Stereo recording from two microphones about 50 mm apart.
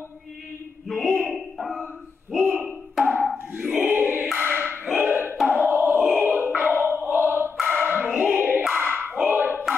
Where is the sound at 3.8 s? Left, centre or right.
Right.